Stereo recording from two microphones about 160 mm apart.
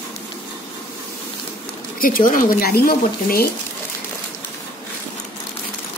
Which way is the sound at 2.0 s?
60° left (ahead or behind).